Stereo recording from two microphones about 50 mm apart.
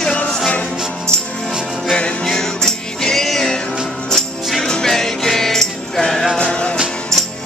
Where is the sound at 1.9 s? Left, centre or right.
Left.